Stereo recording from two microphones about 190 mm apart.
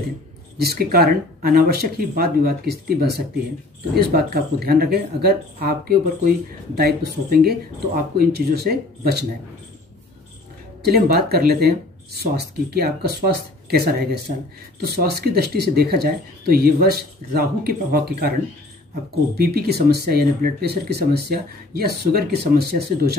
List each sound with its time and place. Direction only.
0.6 s speech: 55° right (ahead or behind)
7.1 s speech: 55° right (ahead or behind)
10.8 s speech: 55° right (ahead or behind)
19.3 s speech: 55° right (ahead or behind)